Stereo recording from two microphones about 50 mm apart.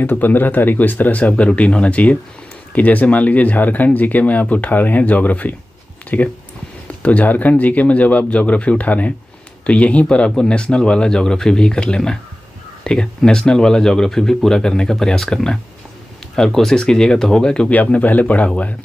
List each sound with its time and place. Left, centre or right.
0.0 s a man's voice: left; by 17.7 s centre
17.7 s a man's voice: left